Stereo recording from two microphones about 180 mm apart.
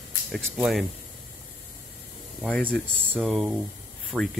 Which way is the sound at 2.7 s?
10° right (ahead or behind).